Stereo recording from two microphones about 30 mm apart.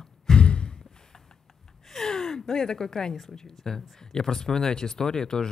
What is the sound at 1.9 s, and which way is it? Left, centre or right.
A woman's voice, centre.